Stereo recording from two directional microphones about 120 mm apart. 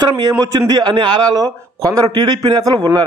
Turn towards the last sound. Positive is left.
turn(degrees=-30)  # may be behind; listen again after turning